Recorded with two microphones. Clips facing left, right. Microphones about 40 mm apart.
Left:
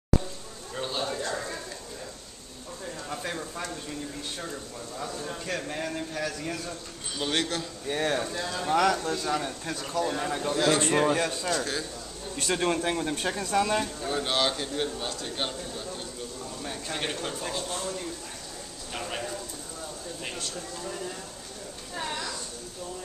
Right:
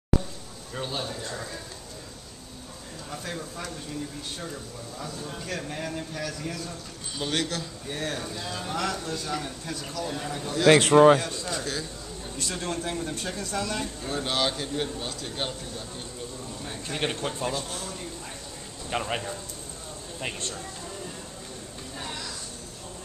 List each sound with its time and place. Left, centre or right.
0.7 s speech: centre
3.1 s speech: centre
7.9 s a man's voice: left
9.9 s a man's voice: left
10.7 s a man's voice: right
11.1 s a man's voice: left
14.0 s speech: centre
16.8 s speech: centre
17.1 s a man's voice: centre
17.5 s speech: centre
18.9 s a man's voice: right